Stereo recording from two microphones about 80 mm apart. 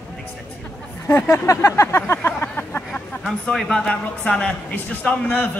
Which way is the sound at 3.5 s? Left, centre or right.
Centre.